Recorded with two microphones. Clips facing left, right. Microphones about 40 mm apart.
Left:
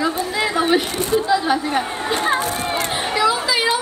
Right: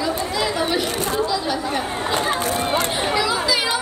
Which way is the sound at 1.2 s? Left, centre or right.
Left.